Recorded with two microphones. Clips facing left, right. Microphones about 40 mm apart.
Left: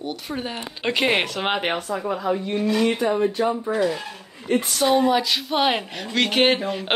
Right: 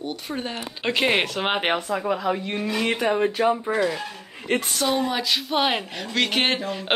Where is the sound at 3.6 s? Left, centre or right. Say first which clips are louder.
Left 1 dB; centre.